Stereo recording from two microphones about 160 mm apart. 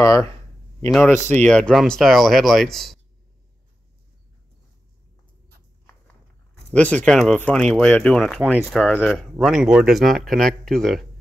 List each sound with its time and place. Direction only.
0.0 s speech: 20° left (ahead or behind)
0.8 s speech: centre (ahead or behind)
6.7 s speech: 10° left (ahead or behind)